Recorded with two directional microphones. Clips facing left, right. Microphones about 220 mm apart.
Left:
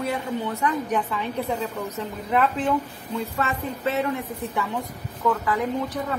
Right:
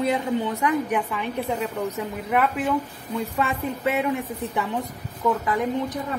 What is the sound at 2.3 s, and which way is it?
A woman's voice, 10° right (ahead or behind).